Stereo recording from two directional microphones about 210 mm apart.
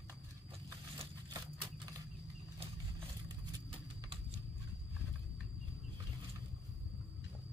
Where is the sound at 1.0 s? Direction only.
20° right (ahead or behind).